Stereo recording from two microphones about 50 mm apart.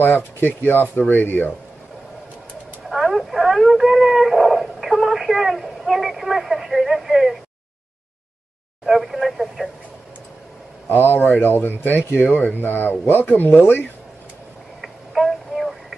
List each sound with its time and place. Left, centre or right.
0.0 s speech: left
2.9 s a sound: centre
8.8 s speech: centre
10.9 s speech: left
12.2 s speech: left
12.6 s speech: left
14.8 s a sound: centre